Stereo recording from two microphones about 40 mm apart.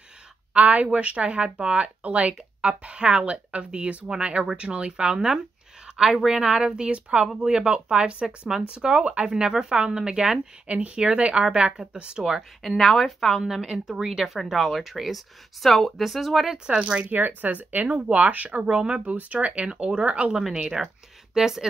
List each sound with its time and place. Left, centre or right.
0.5 s speech: right; by 10.5 s centre
10.7 s speech: right
12.6 s speech: centre
13.4 s speech: centre
16.4 s speech: centre
17.4 s speech: right
20.7 s speech: centre